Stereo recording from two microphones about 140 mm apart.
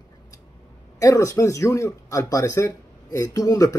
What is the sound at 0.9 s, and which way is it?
Speech, 20° left (ahead or behind).